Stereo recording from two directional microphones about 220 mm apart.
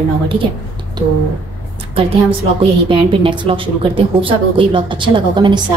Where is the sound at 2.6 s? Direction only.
25° right (ahead or behind).